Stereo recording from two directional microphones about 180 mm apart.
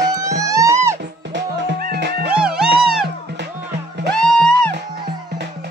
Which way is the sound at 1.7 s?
60° right (ahead or behind).